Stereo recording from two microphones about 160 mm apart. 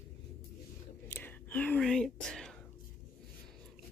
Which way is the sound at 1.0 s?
10° left (ahead or behind).